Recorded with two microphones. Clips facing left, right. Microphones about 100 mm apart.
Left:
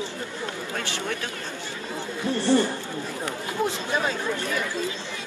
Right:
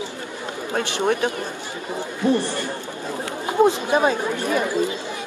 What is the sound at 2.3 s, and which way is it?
Speech, 15° right (ahead or behind).